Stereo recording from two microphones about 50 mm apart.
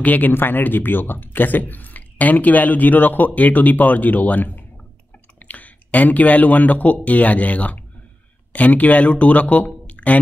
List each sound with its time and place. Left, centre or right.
0.0 s speech: left
9.8 s music: left